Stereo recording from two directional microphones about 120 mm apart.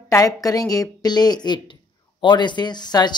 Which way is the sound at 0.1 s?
30° left (ahead or behind).